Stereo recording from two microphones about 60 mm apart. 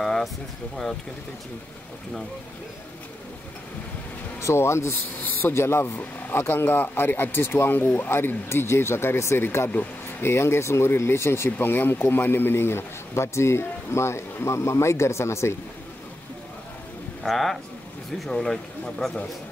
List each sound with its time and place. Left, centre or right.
0.0 s a sound: centre
4.4 s speech: left
11.5 s speech: left
17.2 s speech: centre